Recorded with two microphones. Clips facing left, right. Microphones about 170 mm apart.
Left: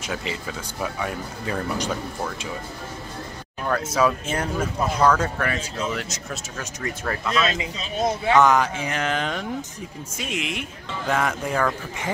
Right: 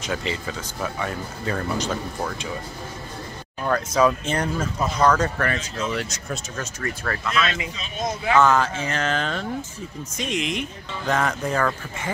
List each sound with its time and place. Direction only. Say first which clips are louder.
0.0 s speech: right 2 dB; 5° left (ahead or behind)
3.6 s speech: right 2 dB; 5° left (ahead or behind)
6.6 s speech: left 3 dB; 15° left (ahead or behind)
8.4 s speech: even; 15° left (ahead or behind)